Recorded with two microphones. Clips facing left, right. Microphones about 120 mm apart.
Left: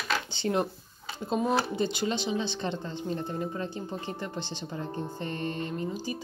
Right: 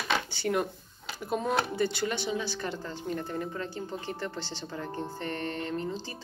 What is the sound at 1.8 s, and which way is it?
A woman's voice, 20° left (ahead or behind).